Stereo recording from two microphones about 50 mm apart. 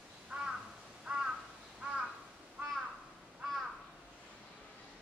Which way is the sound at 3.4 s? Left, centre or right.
Centre.